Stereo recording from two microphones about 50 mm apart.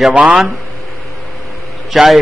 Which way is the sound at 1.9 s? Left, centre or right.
Centre.